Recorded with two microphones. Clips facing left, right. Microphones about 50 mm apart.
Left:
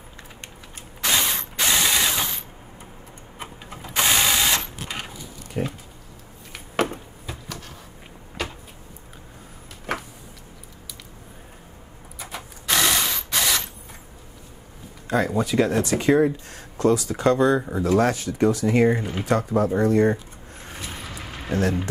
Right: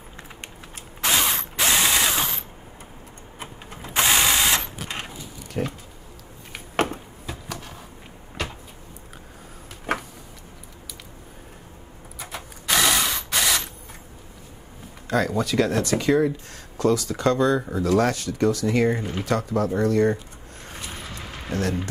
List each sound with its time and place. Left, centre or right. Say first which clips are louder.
1.0 s ratchet: right 1 dB; centre
3.8 s ratchet: right 1 dB; centre
5.5 s speech: even; centre
8.4 s a sound: even; centre
12.2 s mechanisms: even; centre
15.0 s speech: left 1 dB; centre
15.9 s speech: left 2 dB; left
16.8 s speech: left 1 dB; centre
19.2 s speech: left 3 dB; left
20.6 s a sound: left 1 dB; centre